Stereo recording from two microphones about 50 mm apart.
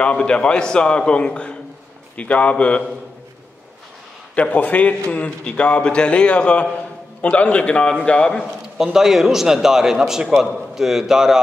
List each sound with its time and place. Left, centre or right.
0.0 s a man's voice: left
4.4 s a man's voice: left
8.7 s a man's voice: centre